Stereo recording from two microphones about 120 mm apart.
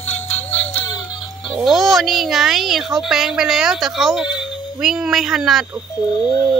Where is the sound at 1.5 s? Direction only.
Centre (ahead or behind).